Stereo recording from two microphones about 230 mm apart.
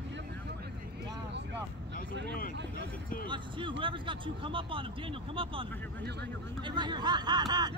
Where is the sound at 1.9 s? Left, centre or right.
Right.